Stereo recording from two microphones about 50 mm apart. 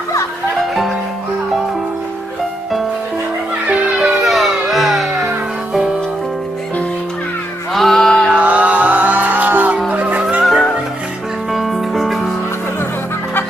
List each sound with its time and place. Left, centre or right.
3.6 s music: right
3.9 s music: centre
7.7 s music: centre
8.3 s music: right
10.4 s music: centre